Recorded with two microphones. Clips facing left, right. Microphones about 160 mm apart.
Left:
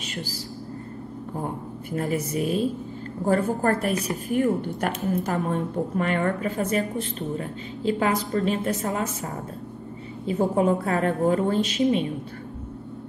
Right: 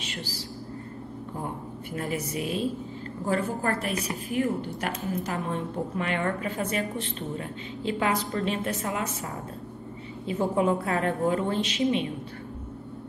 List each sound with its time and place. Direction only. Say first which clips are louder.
1.9 s a woman's voice: left 5 dB; 45° left (ahead or behind)